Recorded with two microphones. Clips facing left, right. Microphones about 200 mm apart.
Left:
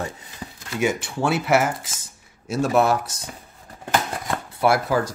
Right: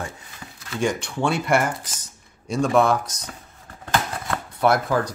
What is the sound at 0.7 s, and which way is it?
Speech, 5° left (ahead or behind).